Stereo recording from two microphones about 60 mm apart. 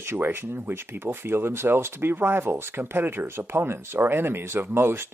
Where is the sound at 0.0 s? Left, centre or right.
Right.